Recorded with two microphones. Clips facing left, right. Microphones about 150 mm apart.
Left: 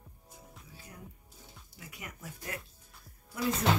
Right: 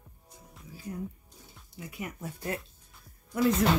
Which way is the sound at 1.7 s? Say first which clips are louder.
Right 9 dB; 25° right (ahead or behind).